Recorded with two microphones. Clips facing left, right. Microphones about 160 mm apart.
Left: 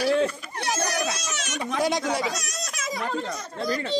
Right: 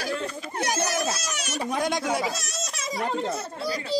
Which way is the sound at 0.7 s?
5° right (ahead or behind).